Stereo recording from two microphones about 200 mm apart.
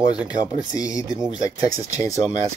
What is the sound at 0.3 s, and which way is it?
Speech, 20° left (ahead or behind).